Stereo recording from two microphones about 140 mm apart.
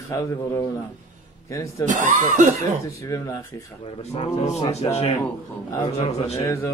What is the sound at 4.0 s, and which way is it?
A man's voice, 50° left (ahead or behind).